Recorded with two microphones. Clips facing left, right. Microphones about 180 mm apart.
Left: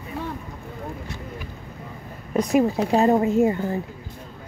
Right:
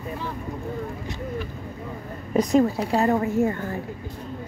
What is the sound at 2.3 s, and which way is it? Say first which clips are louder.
Speech: right 1 dB; centre (ahead or behind).